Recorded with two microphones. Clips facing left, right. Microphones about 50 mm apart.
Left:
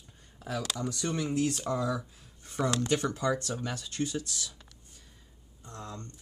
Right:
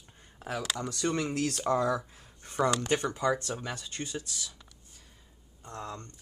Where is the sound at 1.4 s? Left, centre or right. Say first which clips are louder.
Left 2 dB; right.